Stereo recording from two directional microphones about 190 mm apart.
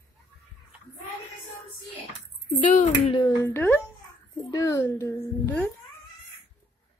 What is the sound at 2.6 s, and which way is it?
Speech, 40° left (ahead or behind).